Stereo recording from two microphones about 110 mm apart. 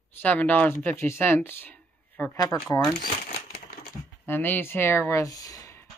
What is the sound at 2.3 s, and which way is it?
Speech, 35° left (ahead or behind).